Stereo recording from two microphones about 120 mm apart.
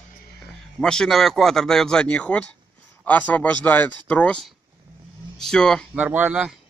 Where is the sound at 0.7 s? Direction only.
5° left (ahead or behind).